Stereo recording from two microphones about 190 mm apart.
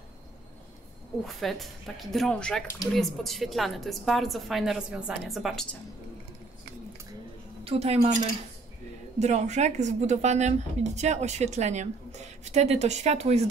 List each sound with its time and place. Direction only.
1.2 s speech: centre (ahead or behind)
7.6 s speech: 35° right (ahead or behind)